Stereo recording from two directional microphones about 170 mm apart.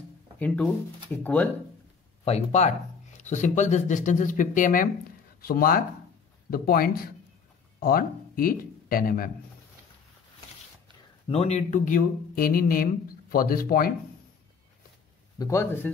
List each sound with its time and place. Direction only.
1.1 s a man's voice: 10° left (ahead or behind)
2.2 s speech: 40° left (ahead or behind); by 9.3 s 55° left (ahead or behind)
11.2 s speech: 35° left (ahead or behind); by 13.9 s 60° left (ahead or behind)
15.3 s a man's voice: 20° left (ahead or behind)